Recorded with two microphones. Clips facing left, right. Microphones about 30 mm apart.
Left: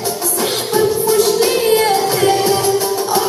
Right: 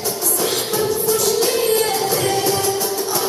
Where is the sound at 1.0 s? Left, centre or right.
Left.